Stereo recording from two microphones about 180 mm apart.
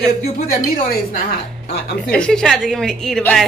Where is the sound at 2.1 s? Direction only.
5° left (ahead or behind).